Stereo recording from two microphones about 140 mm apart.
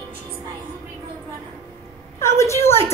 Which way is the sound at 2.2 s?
20° left (ahead or behind).